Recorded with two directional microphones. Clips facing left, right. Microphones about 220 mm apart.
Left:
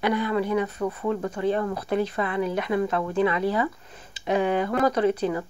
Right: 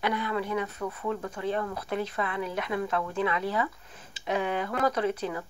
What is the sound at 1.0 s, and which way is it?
Speech, 10° left (ahead or behind).